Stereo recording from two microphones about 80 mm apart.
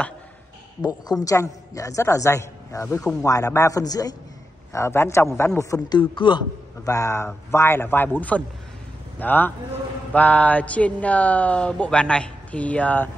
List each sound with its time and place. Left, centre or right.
0.8 s a woman's voice: left
4.7 s a woman's voice: left
5.9 s a man's voice: left
6.8 s a woman's voice: left
7.2 s speech: left